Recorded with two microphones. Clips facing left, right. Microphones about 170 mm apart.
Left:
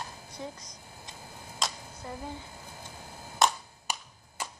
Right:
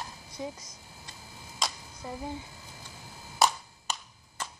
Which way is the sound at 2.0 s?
15° right (ahead or behind).